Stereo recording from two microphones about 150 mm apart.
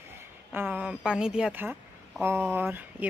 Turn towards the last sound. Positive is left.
turn(degrees=-10)  # may be behind; listen again after turning